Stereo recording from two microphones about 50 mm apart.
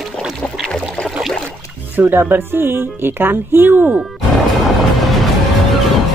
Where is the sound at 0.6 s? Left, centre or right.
Centre.